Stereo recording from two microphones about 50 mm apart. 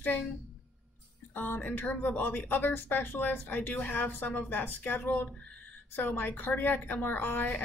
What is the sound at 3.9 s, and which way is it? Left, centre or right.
Speech, left.